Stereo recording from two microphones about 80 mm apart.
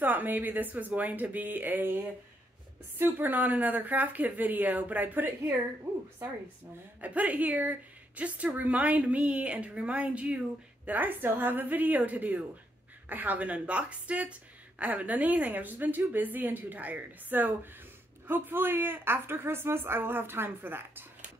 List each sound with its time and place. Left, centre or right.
0.0 s a woman's voice: right
3.0 s a woman's voice: right
7.0 s a woman's voice: centre